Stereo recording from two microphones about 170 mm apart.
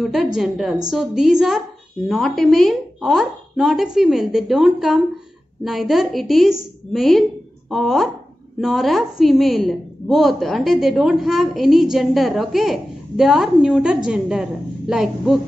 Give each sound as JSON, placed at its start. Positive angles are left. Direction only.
{"t": 0.0, "sound": "a woman's voice", "side_deg": 0}